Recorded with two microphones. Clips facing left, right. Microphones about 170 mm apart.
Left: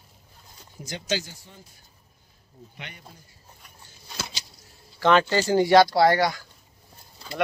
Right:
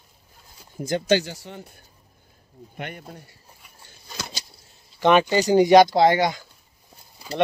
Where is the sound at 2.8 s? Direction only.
55° right (ahead or behind).